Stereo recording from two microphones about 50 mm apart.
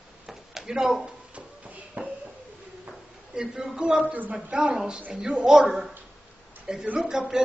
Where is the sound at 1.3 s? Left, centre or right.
Right.